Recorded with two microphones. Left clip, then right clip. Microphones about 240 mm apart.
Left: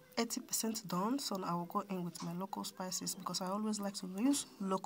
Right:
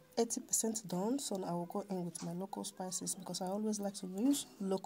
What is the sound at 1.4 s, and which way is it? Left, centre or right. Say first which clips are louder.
Speech: left 2 dB; left.